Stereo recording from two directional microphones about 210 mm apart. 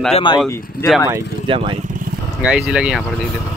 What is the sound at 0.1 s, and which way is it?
Speech, 20° left (ahead or behind).